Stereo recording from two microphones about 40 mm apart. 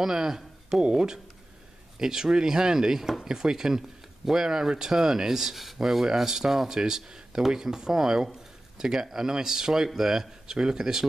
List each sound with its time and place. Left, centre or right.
0.0 s speech: centre